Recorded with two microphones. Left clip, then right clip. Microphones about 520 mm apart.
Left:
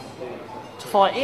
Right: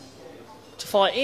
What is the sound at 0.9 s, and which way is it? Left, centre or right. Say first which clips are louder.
Speech: left 3 dB; right.